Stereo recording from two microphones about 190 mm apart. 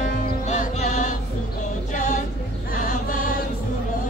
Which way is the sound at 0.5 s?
40° left (ahead or behind).